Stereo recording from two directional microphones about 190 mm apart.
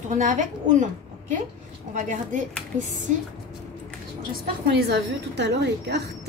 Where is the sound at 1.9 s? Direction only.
40° right (ahead or behind).